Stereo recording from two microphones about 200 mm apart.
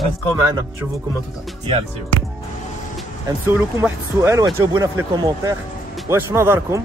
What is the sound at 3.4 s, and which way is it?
Speech, 15° right (ahead or behind).